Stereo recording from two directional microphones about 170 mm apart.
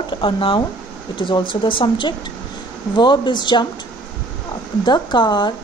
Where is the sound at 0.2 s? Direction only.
30° left (ahead or behind).